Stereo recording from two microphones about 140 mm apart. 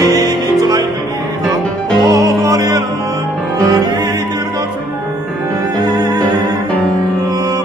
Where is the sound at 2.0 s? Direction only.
25° right (ahead or behind).